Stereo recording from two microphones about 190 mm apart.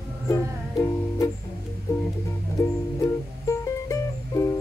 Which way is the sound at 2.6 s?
15° left (ahead or behind).